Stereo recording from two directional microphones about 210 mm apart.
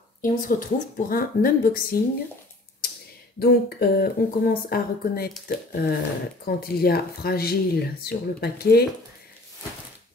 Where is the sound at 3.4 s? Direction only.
45° left (ahead or behind).